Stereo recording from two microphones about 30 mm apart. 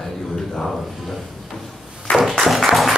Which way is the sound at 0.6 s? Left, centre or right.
Centre.